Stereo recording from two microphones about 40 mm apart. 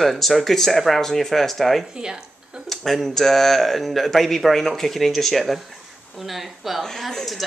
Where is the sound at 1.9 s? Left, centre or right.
Centre.